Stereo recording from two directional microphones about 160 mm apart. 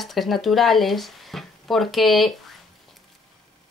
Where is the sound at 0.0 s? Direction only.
Centre (ahead or behind).